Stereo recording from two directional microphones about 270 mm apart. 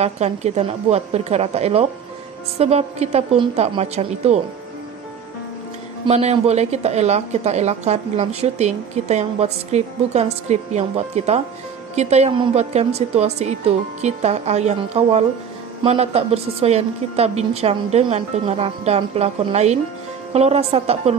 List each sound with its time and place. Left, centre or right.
0.0 s a woman's voice: right
6.0 s a woman's voice: right